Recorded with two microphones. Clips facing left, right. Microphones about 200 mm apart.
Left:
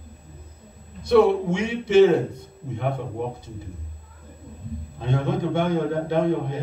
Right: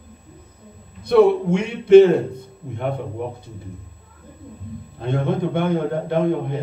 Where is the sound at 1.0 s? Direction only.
55° right (ahead or behind).